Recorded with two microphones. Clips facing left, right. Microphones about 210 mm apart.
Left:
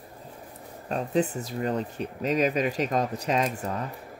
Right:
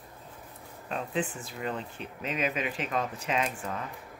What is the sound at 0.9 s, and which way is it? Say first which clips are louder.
Speech: left 6 dB; 40° left (ahead or behind).